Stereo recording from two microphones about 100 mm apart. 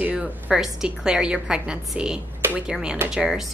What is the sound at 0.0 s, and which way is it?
A woman's voice, 10° right (ahead or behind).